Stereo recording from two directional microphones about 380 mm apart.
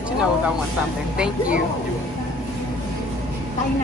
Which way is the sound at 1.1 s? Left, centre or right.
Centre.